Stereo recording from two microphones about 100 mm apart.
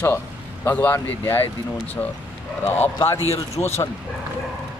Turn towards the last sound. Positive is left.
turn(degrees=25)  # may be behind; listen again after turning